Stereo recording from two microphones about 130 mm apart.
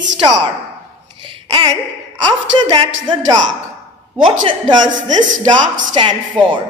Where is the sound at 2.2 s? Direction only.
35° right (ahead or behind).